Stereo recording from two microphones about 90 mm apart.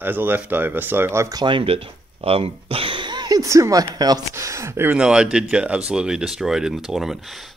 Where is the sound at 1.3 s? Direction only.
60° right (ahead or behind).